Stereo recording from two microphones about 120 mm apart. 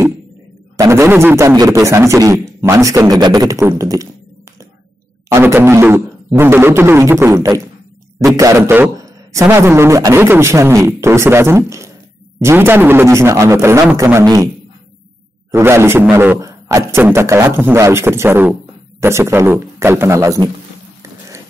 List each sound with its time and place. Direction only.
0.7 s a man's voice: 25° right (ahead or behind)
5.3 s a man's voice: 20° right (ahead or behind)
15.5 s a man's voice: 20° right (ahead or behind)